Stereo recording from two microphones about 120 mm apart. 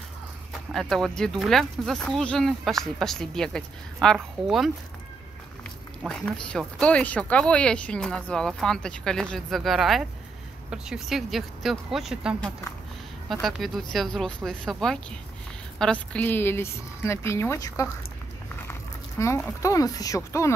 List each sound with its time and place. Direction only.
0.7 s speech: centre (ahead or behind)
6.0 s a woman's voice: 10° left (ahead or behind); by 20.5 s 25° left (ahead or behind)